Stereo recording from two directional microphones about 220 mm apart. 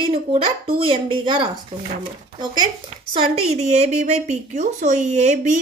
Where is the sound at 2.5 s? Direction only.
20° right (ahead or behind).